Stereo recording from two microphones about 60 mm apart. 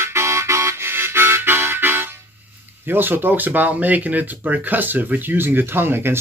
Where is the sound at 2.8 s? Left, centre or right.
Right.